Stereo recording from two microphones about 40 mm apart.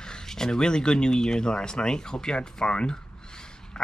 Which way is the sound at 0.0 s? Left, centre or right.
Centre.